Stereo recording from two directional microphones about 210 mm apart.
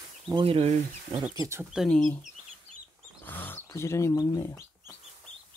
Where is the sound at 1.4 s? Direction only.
15° right (ahead or behind).